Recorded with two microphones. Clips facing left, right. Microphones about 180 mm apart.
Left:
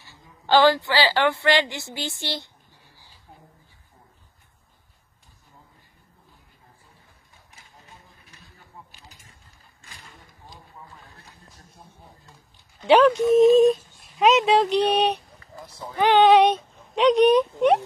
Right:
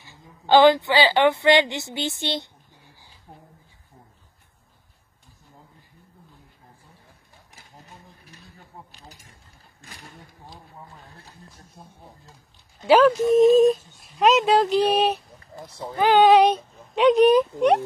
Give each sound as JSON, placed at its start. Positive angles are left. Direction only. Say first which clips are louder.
{"t": 0.0, "sound": "a woman's voice", "louder": "right 2 dB", "side_deg": -20}
{"t": 12.8, "sound": "speech", "louder": "even", "side_deg": -5}